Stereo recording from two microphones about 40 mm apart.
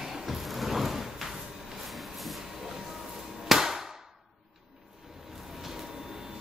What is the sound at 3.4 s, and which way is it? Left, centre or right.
Hammer, centre.